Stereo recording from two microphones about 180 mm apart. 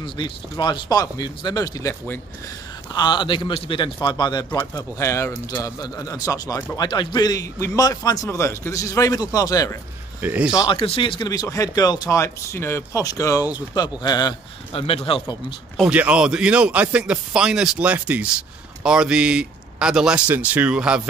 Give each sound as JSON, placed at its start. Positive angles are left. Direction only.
{"t": 0.0, "sound": "speech", "side_deg": 25}
{"t": 10.2, "sound": "speech", "side_deg": -10}
{"t": 10.6, "sound": "speech", "side_deg": 30}
{"t": 15.8, "sound": "speech", "side_deg": -5}